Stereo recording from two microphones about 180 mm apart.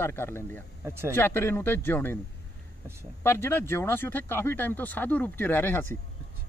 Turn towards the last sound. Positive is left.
turn(degrees=10)  # may be behind; listen again after turning